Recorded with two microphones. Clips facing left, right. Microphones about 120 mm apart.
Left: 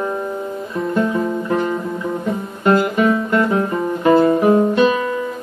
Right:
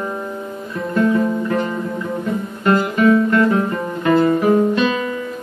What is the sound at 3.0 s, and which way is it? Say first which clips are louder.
Music: right 3 dB; 20° left (ahead or behind).